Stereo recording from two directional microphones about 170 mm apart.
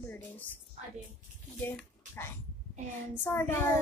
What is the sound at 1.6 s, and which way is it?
Speech, 10° left (ahead or behind).